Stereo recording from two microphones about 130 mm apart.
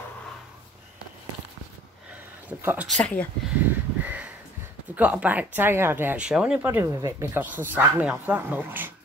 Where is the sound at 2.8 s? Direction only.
5° left (ahead or behind).